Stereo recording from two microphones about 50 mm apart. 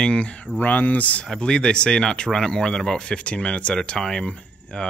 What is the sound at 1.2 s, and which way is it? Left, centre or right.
Speech, centre.